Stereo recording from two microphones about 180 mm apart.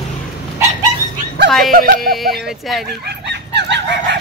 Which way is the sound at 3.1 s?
70° right (ahead or behind).